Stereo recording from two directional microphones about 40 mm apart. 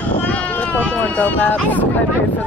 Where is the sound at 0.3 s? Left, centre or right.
Left.